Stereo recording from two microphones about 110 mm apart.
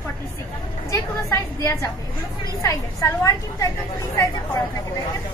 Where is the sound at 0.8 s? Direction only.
30° left (ahead or behind).